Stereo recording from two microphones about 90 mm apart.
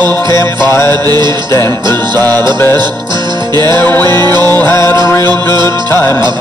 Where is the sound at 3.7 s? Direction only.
25° left (ahead or behind).